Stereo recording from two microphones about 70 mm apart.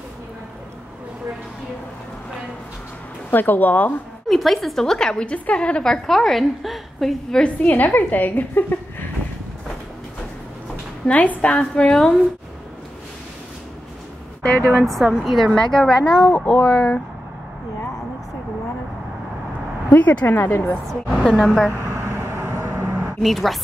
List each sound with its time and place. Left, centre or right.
3.3 s a woman's voice: left
4.3 s a woman's voice: centre
6.0 s a woman's voice: centre
7.6 s a woman's voice: left
11.1 s a woman's voice: centre
14.4 s a woman's voice: centre
14.8 s a woman's voice: centre
15.6 s a woman's voice: centre; by 17.0 s left
19.9 s a woman's voice: left
21.1 s a woman's voice: centre
21.9 s vehicle: right
22.7 s a sound: right
23.2 s a woman's voice: centre